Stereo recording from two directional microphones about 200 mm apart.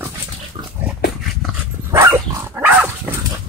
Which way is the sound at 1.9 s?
15° right (ahead or behind).